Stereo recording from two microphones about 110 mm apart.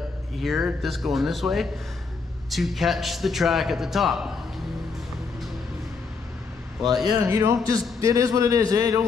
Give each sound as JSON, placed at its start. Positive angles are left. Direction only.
{"t": 0.4, "sound": "a man's voice", "side_deg": 0}
{"t": 7.1, "sound": "a man's voice", "side_deg": -30}